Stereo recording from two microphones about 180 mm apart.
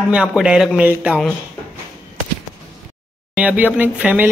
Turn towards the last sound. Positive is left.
turn(degrees=-10)  # may be behind; listen again after turning